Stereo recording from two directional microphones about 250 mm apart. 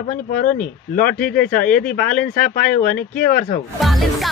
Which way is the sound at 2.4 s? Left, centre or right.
Left.